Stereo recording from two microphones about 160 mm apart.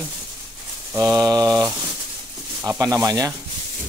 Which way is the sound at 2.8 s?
20° right (ahead or behind).